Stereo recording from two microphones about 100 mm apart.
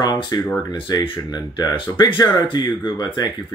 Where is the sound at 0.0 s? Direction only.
40° left (ahead or behind).